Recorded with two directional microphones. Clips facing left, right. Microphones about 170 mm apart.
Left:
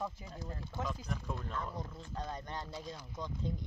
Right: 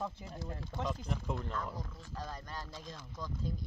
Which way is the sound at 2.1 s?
20° left (ahead or behind).